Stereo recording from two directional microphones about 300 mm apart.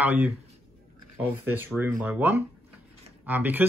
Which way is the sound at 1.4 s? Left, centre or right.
Centre.